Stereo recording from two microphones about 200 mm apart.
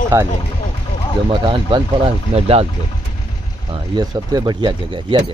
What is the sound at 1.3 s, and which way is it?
Speech, 25° right (ahead or behind).